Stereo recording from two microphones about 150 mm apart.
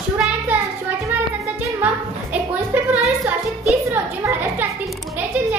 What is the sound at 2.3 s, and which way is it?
Music, 10° right (ahead or behind).